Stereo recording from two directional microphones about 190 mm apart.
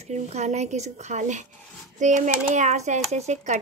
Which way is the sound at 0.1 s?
35° right (ahead or behind).